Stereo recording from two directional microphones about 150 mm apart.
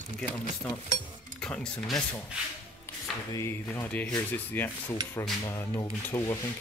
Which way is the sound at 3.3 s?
15° left (ahead or behind).